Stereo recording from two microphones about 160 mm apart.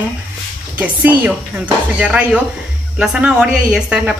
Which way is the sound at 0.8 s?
10° right (ahead or behind).